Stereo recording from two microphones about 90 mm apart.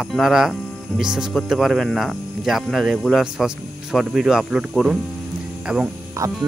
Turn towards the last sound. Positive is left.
turn(degrees=-35)  # may be behind; listen again after turning